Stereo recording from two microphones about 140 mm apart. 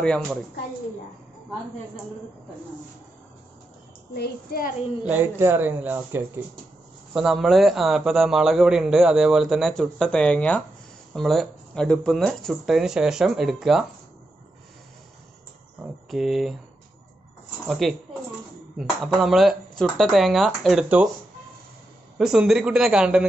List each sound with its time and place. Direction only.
0.0 s speech: 5° left (ahead or behind)
4.5 s a woman's voice: 90° left
5.0 s speech: 10° right (ahead or behind)
7.2 s a man's voice: centre (ahead or behind)
16.1 s a man's voice: centre (ahead or behind)
17.6 s a man's voice: centre (ahead or behind)
22.2 s a man's voice: 5° right (ahead or behind)